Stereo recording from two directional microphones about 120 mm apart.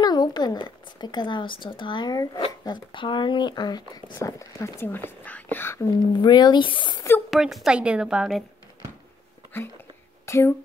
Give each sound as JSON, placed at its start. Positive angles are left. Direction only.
{"t": 0.0, "sound": "speech", "side_deg": 35}
{"t": 4.8, "sound": "speech", "side_deg": 15}
{"t": 6.1, "sound": "speech", "side_deg": 35}
{"t": 7.2, "sound": "a woman's voice", "side_deg": -5}
{"t": 10.2, "sound": "speech", "side_deg": 20}